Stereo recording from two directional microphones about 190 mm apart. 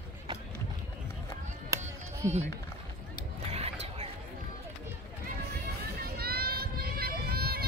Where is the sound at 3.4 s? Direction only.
30° right (ahead or behind).